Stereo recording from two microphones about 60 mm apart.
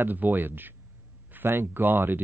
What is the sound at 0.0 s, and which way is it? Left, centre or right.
Speech, right.